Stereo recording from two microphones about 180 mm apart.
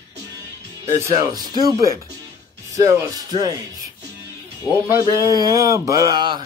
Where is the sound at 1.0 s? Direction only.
20° right (ahead or behind).